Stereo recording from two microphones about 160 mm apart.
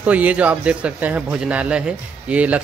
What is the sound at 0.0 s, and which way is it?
A man's voice, 10° right (ahead or behind).